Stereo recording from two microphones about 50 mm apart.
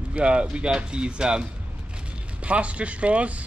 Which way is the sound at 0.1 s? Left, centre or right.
Right.